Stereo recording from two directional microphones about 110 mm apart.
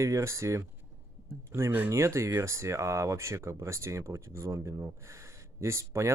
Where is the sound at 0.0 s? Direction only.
25° right (ahead or behind).